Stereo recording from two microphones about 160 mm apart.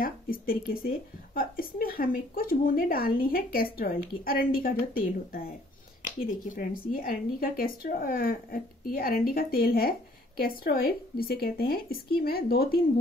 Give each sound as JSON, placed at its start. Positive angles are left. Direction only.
{"t": 0.0, "sound": "speech", "side_deg": 65}